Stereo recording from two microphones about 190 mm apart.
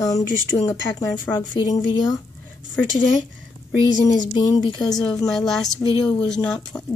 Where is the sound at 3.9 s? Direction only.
20° left (ahead or behind).